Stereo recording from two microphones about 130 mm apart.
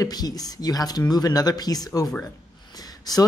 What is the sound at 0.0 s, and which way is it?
Speech, 30° left (ahead or behind).